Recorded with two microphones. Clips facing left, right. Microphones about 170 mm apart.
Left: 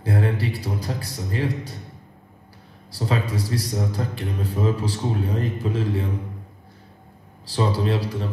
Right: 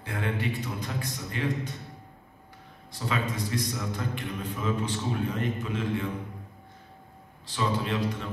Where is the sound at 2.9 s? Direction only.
35° left (ahead or behind).